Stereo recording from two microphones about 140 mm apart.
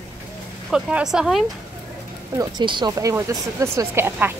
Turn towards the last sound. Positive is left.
turn(degrees=-15)  # may be behind; listen again after turning